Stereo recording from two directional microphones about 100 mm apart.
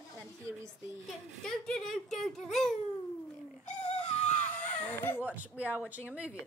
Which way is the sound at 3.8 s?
90° left.